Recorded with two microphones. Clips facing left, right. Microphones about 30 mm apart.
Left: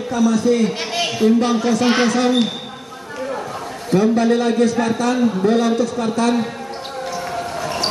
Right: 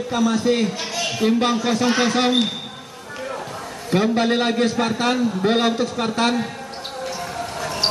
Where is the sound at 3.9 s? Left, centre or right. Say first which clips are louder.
Left 3 dB; right.